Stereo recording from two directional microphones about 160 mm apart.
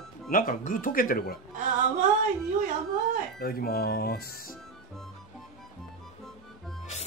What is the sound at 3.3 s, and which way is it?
Speech, 75° left (ahead or behind).